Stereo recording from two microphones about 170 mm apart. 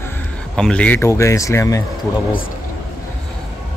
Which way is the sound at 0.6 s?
5° left (ahead or behind).